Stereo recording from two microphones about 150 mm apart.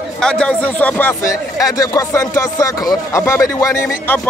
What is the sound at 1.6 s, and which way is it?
Speech, 25° left (ahead or behind).